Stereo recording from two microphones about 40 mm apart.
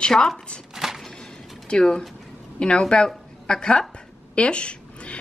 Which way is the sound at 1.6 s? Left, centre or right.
Centre.